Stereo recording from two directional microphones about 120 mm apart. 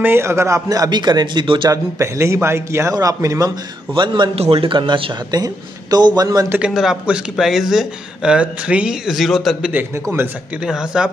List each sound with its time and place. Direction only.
0.0 s a man's voice: 20° right (ahead or behind); by 1.7 s 40° right (ahead or behind)
1.7 s a man's voice: 25° right (ahead or behind)
3.9 s a man's voice: 45° right (ahead or behind)
4.4 s a man's voice: 55° right (ahead or behind)
5.3 s a man's voice: 35° right (ahead or behind)
6.6 s speech: 5° right (ahead or behind)
10.1 s a man's voice: 30° right (ahead or behind)
10.6 s speech: 5° right (ahead or behind)